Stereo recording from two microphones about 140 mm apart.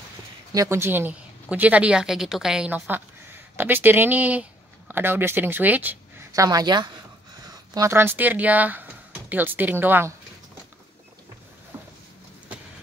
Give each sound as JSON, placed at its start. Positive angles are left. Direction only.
{"t": 0.5, "sound": "a woman's voice", "side_deg": -20}
{"t": 6.3, "sound": "speech", "side_deg": -25}